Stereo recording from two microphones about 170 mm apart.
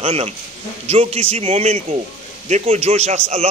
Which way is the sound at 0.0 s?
35° right (ahead or behind).